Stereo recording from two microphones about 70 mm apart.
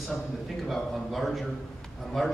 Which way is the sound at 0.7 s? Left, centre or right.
Centre.